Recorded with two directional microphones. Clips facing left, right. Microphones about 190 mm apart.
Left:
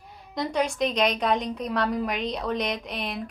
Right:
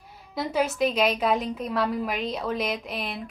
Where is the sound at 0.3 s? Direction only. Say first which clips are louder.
Even; 5° right (ahead or behind).